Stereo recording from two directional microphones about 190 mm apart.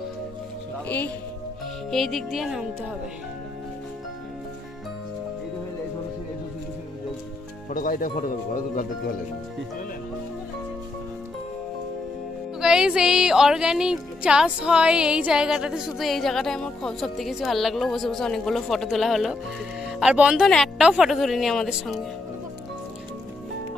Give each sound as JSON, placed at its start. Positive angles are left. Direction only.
{"t": 0.8, "sound": "speech", "side_deg": 10}
{"t": 7.7, "sound": "speech", "side_deg": 45}
{"t": 12.5, "sound": "speech", "side_deg": -5}